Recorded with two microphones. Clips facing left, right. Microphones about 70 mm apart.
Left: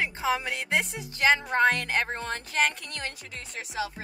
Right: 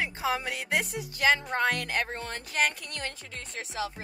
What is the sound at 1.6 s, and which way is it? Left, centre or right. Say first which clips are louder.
Speech: left 4 dB; left.